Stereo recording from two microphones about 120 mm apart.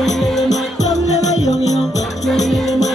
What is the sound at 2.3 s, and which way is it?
Music, centre (ahead or behind).